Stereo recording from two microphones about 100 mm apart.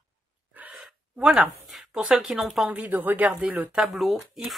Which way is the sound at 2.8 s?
15° right (ahead or behind).